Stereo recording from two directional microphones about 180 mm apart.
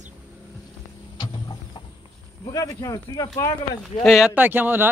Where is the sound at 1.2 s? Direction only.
25° left (ahead or behind).